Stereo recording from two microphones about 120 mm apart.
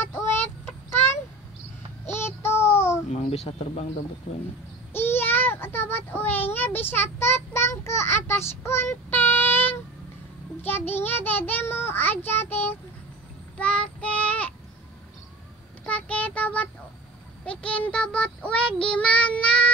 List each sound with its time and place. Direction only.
0.3 s child singing: 20° left (ahead or behind)
2.1 s child singing: 20° left (ahead or behind)
3.1 s a sound: 65° left (ahead or behind)
3.4 s speech: 60° left (ahead or behind)
4.9 s child singing: 20° left (ahead or behind)
10.6 s a child's voice: 15° left (ahead or behind)
13.6 s child singing: 10° left (ahead or behind)
15.8 s child singing: 10° left (ahead or behind)
17.5 s a child's voice: 10° left (ahead or behind)